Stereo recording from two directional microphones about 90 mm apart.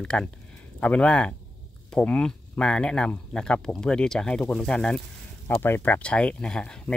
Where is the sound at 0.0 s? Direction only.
10° left (ahead or behind).